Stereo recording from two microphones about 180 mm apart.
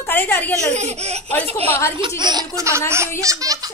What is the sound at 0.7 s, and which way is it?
Speech, 40° right (ahead or behind).